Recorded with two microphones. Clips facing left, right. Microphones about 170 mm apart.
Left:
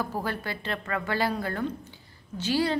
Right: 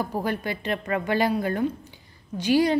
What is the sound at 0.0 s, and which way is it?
A woman's voice, 15° right (ahead or behind).